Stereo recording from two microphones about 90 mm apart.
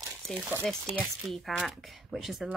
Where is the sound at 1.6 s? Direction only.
5° right (ahead or behind).